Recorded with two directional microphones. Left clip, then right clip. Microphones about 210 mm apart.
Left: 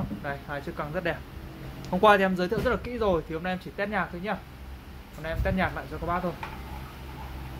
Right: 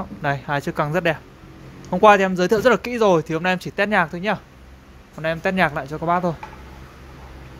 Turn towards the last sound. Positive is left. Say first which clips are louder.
# right 9 dB
turn(degrees=-50)  # may be behind; listen again after turning